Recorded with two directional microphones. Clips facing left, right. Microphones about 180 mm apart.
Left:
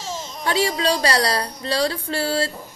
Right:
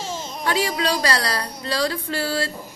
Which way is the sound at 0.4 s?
30° left (ahead or behind).